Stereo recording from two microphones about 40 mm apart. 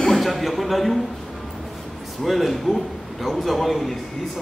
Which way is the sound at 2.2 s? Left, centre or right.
Centre.